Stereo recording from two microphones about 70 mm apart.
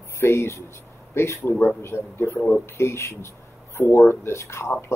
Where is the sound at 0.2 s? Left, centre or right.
Left.